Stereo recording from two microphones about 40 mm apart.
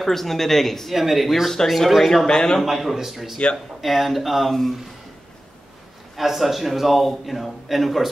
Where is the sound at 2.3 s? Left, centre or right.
Centre.